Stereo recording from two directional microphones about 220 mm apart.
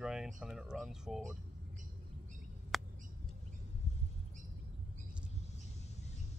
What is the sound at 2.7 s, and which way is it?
Bird, centre (ahead or behind).